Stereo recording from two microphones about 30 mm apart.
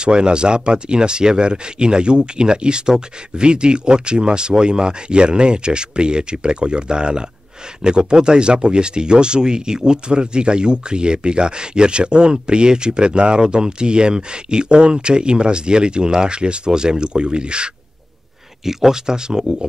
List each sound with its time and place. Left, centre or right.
0.0 s speech: right
18.7 s speech: centre